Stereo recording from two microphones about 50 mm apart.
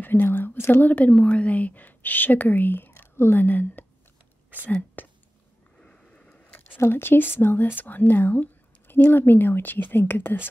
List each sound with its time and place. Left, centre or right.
0.0 s a woman's voice: left
0.8 s a woman's voice: left
5.0 s a sound: left
5.8 s vehicle: left
6.9 s speech: left